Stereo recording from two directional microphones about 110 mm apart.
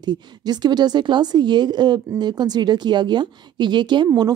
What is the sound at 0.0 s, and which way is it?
A woman's voice, 40° right (ahead or behind).